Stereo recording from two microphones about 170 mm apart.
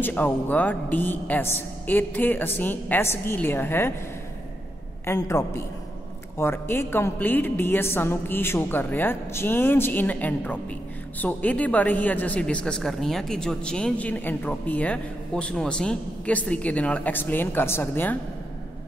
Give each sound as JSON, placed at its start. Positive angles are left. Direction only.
{"t": 0.0, "sound": "a woman's voice", "side_deg": 10}
{"t": 5.0, "sound": "a woman's voice", "side_deg": 15}